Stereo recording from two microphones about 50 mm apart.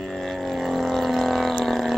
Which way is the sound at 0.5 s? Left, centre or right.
Centre.